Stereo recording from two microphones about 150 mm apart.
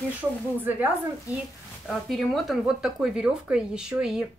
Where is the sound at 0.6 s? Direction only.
10° right (ahead or behind).